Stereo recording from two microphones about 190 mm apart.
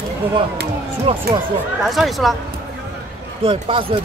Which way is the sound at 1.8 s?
Centre (ahead or behind).